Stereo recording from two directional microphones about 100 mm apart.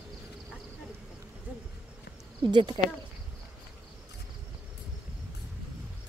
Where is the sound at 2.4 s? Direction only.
50° right (ahead or behind).